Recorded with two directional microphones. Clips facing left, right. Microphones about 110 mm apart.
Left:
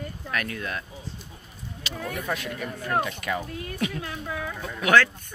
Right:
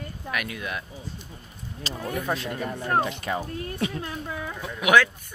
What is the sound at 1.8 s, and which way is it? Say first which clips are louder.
Speech: right 2 dB; 35° right (ahead or behind).